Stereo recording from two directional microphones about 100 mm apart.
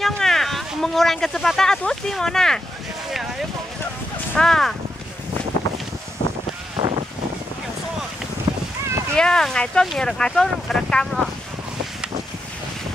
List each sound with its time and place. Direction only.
0.0 s speech: 5° left (ahead or behind)
4.4 s speech: 5° left (ahead or behind)
6.8 s a sound: 45° right (ahead or behind)
9.1 s speech: 5° left (ahead or behind)